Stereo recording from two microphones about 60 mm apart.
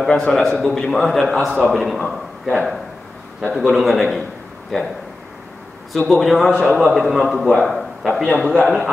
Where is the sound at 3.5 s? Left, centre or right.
Centre.